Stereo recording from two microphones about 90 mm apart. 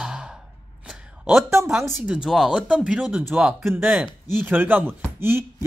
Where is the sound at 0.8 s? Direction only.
5° right (ahead or behind).